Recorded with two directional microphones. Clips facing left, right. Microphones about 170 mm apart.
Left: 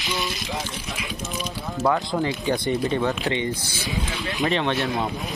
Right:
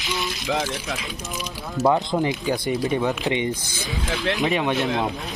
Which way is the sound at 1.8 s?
20° right (ahead or behind).